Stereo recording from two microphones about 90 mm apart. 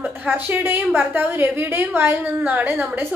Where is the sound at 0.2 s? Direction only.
20° right (ahead or behind).